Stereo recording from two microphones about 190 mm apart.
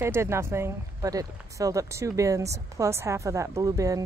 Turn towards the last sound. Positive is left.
turn(degrees=-15)  # may be behind; listen again after turning